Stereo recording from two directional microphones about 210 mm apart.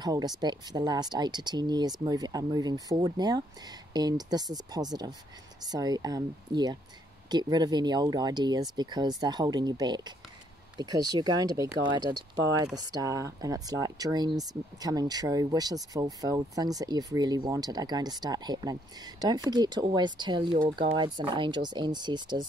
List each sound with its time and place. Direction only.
0.0 s speech: 20° right (ahead or behind)